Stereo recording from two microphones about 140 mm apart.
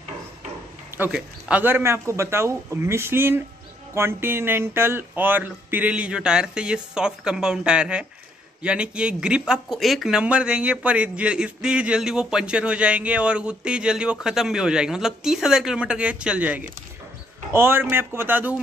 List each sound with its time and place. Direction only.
0.9 s speech: 10° right (ahead or behind)